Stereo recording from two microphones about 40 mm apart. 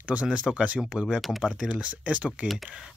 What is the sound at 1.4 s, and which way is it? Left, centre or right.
Speech, centre.